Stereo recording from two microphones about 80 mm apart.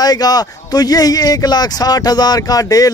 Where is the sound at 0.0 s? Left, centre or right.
Left.